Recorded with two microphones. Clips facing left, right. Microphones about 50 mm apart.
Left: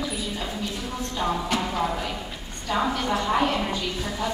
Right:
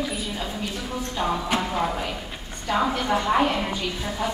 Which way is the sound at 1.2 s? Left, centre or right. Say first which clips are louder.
Right 1 dB; centre.